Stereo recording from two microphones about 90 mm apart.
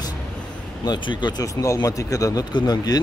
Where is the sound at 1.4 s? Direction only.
40° left (ahead or behind).